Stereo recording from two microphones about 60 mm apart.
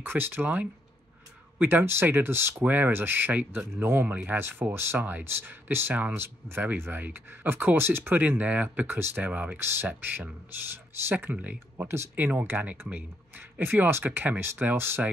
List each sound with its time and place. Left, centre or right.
0.0 s speech: right
2.6 s speech: right
4.9 s speech: right
5.2 s speech: right
8.8 s speech: right
9.1 s speech: right
9.6 s speech: right
11.8 s speech: right
12.2 s speech: right